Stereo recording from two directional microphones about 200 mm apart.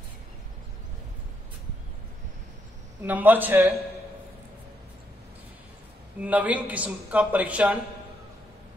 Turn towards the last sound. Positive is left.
turn(degrees=-5)  # may be behind; listen again after turning